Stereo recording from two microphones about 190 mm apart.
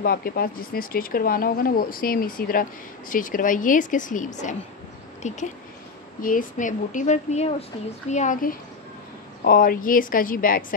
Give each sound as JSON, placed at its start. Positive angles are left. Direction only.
{"t": 0.0, "sound": "speech", "side_deg": 50}